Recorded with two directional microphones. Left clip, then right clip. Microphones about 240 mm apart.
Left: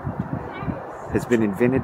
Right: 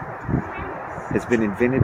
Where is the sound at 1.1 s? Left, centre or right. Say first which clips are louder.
Even; centre.